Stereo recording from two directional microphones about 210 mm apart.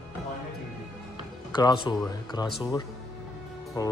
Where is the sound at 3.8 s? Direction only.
15° left (ahead or behind).